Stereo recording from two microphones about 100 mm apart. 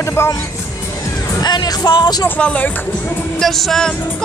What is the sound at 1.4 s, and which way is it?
Music, 45° left (ahead or behind).